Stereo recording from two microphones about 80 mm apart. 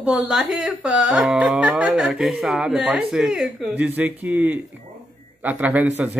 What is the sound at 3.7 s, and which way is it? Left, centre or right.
A woman's voice, right.